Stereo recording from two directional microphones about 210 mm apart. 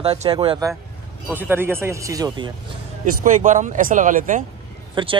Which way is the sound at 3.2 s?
35° right (ahead or behind).